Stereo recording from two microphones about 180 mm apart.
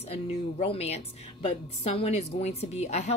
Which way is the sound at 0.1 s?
35° left (ahead or behind).